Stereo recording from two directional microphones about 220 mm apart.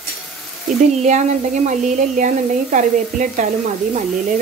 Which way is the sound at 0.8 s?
30° right (ahead or behind).